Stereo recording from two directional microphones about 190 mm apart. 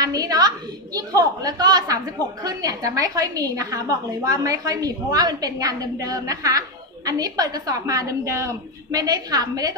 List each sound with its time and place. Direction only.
0.0 s a woman's voice: 20° right (ahead or behind)